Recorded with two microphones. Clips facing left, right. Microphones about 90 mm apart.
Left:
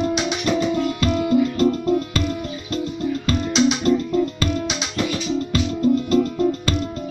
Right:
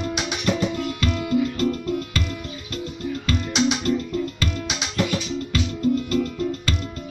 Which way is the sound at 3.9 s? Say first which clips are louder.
Left 5 dB; 30° left (ahead or behind).